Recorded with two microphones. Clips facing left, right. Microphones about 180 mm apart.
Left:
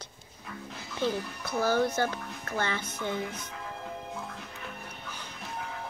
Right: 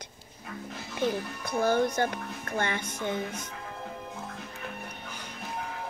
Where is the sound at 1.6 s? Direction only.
55° right (ahead or behind).